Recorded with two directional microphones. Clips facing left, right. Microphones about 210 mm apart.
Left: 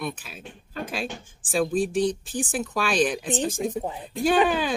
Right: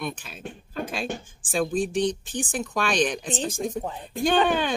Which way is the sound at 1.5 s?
Centre (ahead or behind).